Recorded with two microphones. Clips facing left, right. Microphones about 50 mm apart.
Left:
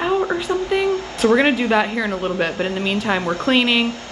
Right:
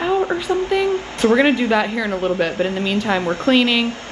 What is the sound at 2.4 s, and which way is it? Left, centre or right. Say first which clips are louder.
A woman's voice: right 1 dB; left.